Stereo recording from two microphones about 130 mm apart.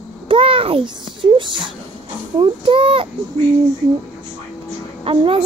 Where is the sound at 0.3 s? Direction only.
45° right (ahead or behind).